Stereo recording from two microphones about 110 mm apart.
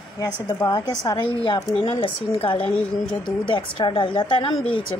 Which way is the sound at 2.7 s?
10° left (ahead or behind).